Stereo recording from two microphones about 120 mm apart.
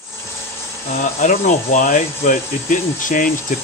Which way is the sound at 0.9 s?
90° left.